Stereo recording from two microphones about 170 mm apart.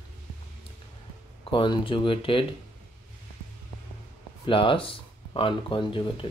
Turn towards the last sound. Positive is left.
turn(degrees=30)  # may be behind; listen again after turning